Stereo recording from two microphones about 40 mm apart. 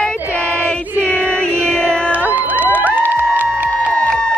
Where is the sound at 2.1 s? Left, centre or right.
Right.